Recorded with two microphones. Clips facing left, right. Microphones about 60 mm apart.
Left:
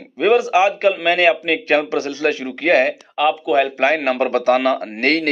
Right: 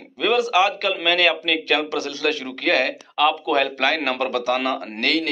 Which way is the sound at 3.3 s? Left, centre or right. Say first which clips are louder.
Left 4 dB; centre.